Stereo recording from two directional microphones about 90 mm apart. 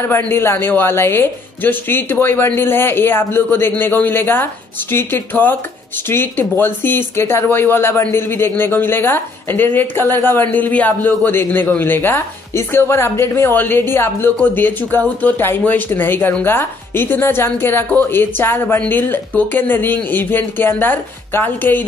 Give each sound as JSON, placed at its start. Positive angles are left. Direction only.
{"t": 0.0, "sound": "a man's voice", "side_deg": 25}